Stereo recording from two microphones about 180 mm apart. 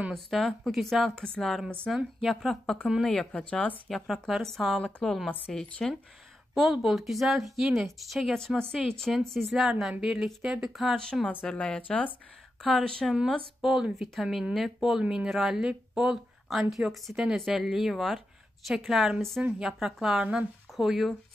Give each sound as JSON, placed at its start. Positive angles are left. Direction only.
{"t": 0.0, "sound": "speech", "side_deg": 0}